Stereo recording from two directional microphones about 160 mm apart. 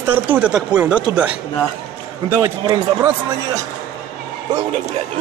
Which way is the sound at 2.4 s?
20° right (ahead or behind).